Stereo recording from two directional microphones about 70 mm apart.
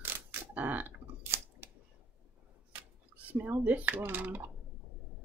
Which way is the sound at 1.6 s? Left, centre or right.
Right.